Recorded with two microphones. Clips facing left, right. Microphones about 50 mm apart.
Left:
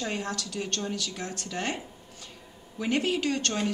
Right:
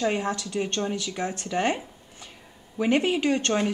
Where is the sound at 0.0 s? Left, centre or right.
Right.